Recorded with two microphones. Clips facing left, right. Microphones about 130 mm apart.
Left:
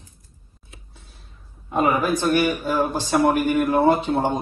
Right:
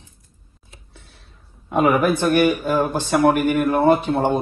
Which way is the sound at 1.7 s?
75° right (ahead or behind).